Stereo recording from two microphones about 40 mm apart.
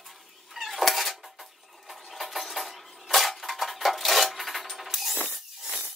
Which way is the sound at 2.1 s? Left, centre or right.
Centre.